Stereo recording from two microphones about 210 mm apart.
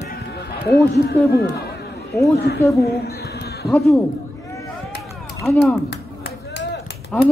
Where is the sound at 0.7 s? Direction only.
50° left (ahead or behind).